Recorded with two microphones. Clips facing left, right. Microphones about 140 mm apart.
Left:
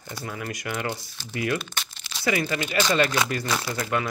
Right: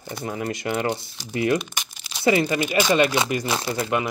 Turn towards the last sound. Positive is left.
turn(degrees=-30)  # may be behind; listen again after turning